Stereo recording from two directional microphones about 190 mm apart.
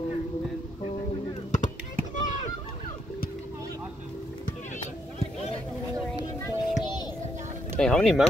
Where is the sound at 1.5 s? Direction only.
40° left (ahead or behind).